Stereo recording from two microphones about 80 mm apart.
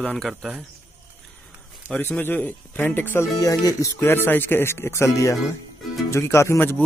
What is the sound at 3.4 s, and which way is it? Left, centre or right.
Music, left.